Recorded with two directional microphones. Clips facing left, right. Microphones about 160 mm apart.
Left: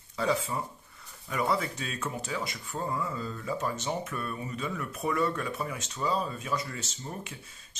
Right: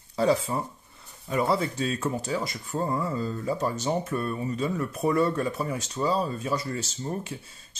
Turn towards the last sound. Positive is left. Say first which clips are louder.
# right 7 dB
turn(degrees=-35)  # may be behind; listen again after turning